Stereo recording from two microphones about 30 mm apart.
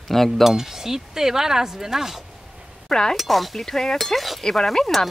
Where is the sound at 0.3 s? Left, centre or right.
Centre.